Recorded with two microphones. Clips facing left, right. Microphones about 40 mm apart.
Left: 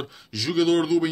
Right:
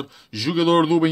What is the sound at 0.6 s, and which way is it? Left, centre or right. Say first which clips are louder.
Speech: right 4 dB; right.